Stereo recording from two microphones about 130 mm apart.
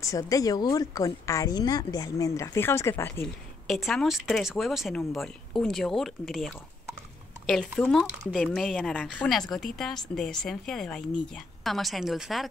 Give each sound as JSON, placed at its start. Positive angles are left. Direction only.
{"t": 0.0, "sound": "speech", "side_deg": 25}
{"t": 3.6, "sound": "a woman's voice", "side_deg": 0}